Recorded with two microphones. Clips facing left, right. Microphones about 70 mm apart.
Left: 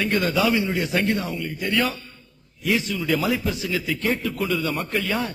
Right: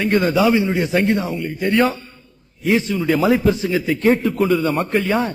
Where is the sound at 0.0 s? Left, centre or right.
Right.